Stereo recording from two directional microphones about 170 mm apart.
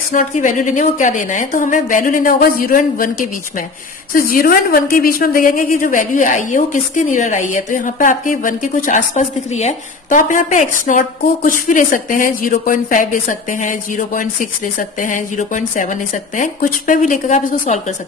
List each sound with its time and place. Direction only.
0.1 s speech: 50° left (ahead or behind)